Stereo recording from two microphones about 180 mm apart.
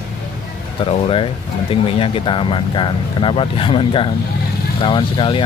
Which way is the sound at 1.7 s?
30° left (ahead or behind).